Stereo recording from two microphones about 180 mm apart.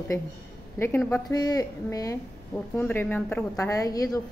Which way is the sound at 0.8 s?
10° left (ahead or behind).